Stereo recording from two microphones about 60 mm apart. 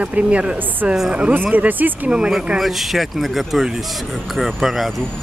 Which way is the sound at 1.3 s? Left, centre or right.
Right.